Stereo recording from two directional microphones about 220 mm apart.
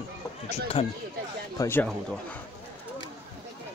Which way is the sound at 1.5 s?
10° left (ahead or behind).